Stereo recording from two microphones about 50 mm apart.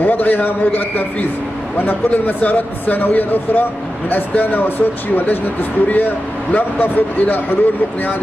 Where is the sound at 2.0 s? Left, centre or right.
Left.